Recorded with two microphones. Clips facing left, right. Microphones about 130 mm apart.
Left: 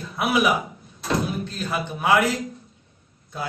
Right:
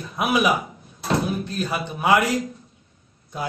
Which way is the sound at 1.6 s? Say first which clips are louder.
Right 1 dB; 15° right (ahead or behind).